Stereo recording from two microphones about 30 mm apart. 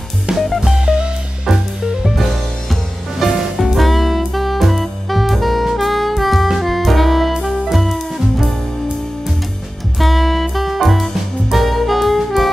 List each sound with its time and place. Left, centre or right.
0.3 s music: right
3.3 s music: centre
5.8 s saxophone: centre
6.6 s music: centre
9.9 s music: centre